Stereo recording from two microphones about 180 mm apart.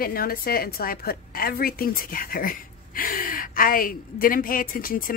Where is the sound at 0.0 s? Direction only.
55° left (ahead or behind).